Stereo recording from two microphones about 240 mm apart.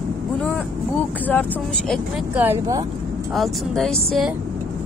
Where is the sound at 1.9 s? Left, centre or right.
Centre.